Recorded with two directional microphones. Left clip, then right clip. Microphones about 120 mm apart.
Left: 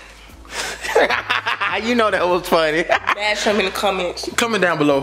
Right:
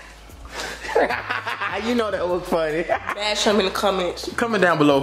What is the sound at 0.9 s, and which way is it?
Speech, 45° left (ahead or behind).